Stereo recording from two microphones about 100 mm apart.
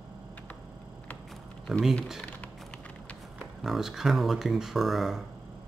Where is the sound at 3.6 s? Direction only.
5° right (ahead or behind).